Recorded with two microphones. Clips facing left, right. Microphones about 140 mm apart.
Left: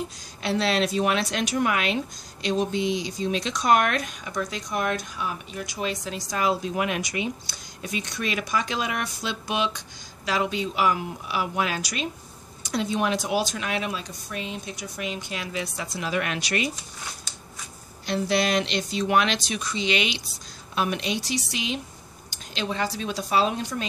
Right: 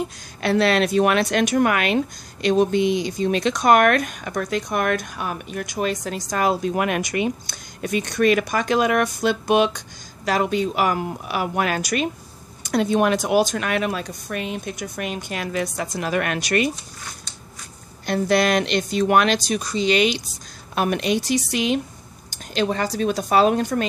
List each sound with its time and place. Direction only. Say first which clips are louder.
0.4 s speech: right 5 dB; 60° right (ahead or behind)
18.0 s speech: right 5 dB; 50° right (ahead or behind)
20.7 s speech: right 6 dB; 55° right (ahead or behind)